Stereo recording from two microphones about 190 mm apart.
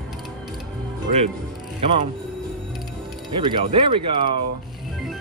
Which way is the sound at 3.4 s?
25° right (ahead or behind).